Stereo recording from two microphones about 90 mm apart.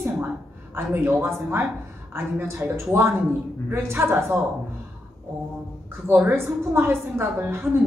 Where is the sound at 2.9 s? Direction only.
30° right (ahead or behind).